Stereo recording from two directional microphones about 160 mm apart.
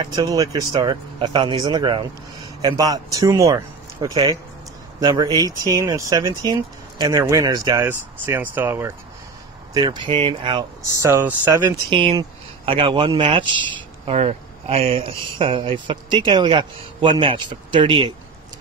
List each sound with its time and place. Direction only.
0.0 s speech: 25° right (ahead or behind)
9.8 s speech: 25° right (ahead or behind)
11.1 s speech: 15° right (ahead or behind)
12.2 s a man's voice: 30° right (ahead or behind)